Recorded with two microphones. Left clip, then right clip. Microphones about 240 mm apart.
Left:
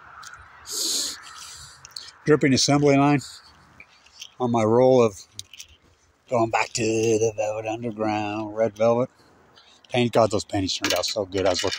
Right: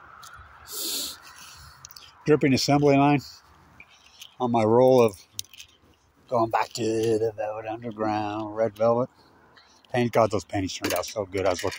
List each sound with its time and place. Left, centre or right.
0.7 s bird: centre
2.2 s speech: centre
4.4 s speech: centre
6.2 s a man's voice: centre